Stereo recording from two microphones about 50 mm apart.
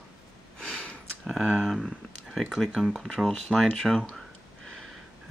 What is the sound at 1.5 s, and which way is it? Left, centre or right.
Speech, centre.